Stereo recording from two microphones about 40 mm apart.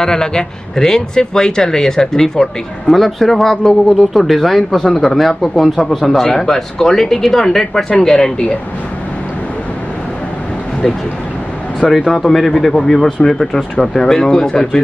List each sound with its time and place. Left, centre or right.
0.0 s speech: centre
11.9 s speech: centre